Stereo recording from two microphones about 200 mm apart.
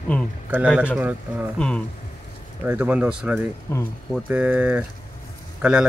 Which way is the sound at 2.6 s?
5° right (ahead or behind).